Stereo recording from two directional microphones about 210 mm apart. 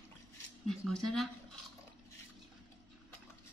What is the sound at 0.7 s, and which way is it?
Speech, centre (ahead or behind).